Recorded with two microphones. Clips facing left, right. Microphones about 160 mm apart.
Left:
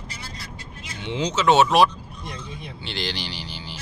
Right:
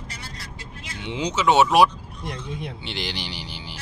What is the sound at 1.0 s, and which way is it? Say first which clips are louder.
Speech: left 1 dB; 15° right (ahead or behind).